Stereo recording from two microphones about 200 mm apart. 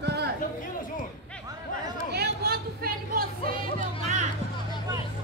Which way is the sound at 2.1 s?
55° right (ahead or behind).